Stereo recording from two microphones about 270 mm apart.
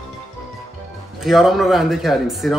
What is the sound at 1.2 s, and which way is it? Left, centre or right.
Speech, centre.